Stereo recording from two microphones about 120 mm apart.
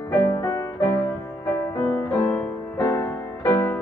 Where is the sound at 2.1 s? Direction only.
15° left (ahead or behind).